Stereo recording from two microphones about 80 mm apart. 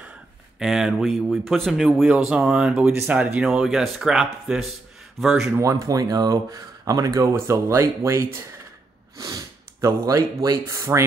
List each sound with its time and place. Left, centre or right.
0.6 s speech: centre
2.0 s speech: centre
3.1 s speech: centre
5.6 s speech: right
7.5 s speech: right
9.2 s sniff: right
10.6 s speech: right